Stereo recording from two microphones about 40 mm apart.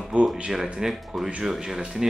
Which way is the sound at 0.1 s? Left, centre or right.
Right.